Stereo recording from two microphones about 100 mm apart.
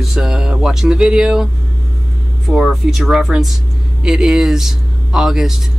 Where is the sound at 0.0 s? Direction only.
5° right (ahead or behind).